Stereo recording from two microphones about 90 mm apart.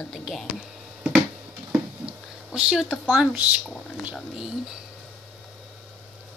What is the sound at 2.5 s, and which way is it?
Speech, 10° right (ahead or behind).